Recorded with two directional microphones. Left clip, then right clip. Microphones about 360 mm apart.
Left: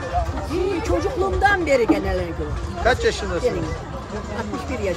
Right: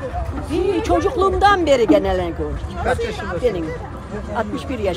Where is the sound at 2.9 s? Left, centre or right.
Left.